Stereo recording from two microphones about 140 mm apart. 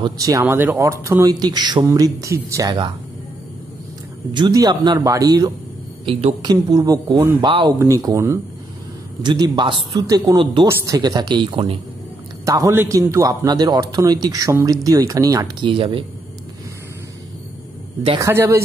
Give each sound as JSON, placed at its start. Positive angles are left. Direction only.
{"t": 0.0, "sound": "a man's voice", "side_deg": -25}
{"t": 4.3, "sound": "a man's voice", "side_deg": -30}
{"t": 7.8, "sound": "a man's voice", "side_deg": -25}
{"t": 12.4, "sound": "a man's voice", "side_deg": -20}
{"t": 15.6, "sound": "a man's voice", "side_deg": -40}
{"t": 18.2, "sound": "a man's voice", "side_deg": -20}